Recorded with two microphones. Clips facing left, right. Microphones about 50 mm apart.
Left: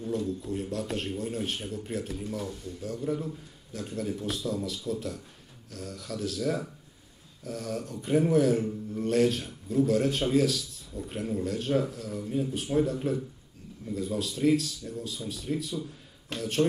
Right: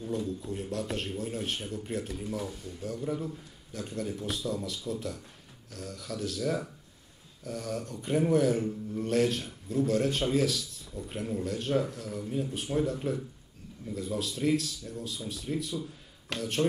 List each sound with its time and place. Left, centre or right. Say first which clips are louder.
0.0 s a man's voice: left 2 dB; centre